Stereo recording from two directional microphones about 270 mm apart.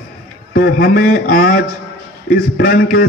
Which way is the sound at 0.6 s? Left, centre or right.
Left.